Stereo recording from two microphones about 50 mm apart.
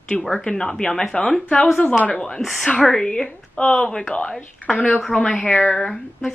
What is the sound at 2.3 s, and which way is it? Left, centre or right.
Speech, centre.